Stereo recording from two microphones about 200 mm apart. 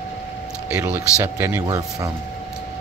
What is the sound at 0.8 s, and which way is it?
Speech, 10° right (ahead or behind).